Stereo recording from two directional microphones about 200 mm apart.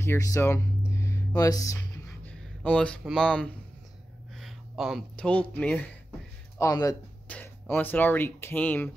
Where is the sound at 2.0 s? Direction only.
5° left (ahead or behind).